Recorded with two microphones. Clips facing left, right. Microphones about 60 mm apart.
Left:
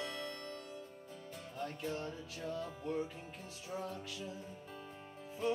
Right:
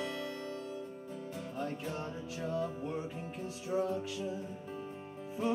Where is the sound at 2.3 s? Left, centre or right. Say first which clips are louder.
Right 8 dB; centre.